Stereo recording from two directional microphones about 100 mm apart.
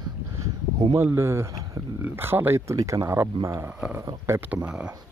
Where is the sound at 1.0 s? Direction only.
25° right (ahead or behind).